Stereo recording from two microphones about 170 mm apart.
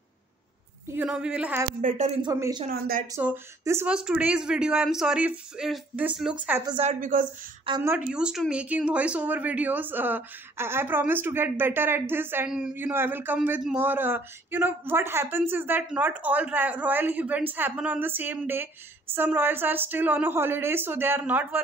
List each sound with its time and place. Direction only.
0.8 s speech: 10° right (ahead or behind)
1.8 s a woman's voice: 50° right (ahead or behind)
2.2 s speech: 25° right (ahead or behind)
2.7 s speech: 60° right (ahead or behind)
3.1 s speech: 15° right (ahead or behind)
6.8 s a woman's voice: 45° right (ahead or behind)
7.8 s speech: 10° right (ahead or behind)